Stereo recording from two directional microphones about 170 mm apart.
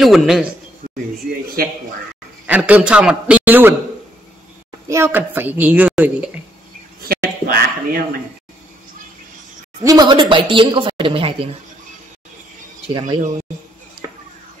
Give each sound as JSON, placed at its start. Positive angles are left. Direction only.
{"t": 0.0, "sound": "a man's voice", "side_deg": 0}
{"t": 1.6, "sound": "a man's voice", "side_deg": -60}
{"t": 2.4, "sound": "a woman's voice", "side_deg": -10}
{"t": 4.8, "sound": "a woman's voice", "side_deg": -15}
{"t": 7.0, "sound": "a sound", "side_deg": -60}
{"t": 9.8, "sound": "a woman's voice", "side_deg": -25}
{"t": 12.8, "sound": "a woman's voice", "side_deg": -30}